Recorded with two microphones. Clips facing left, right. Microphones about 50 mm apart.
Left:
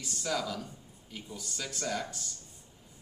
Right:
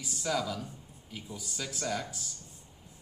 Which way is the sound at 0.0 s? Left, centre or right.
Centre.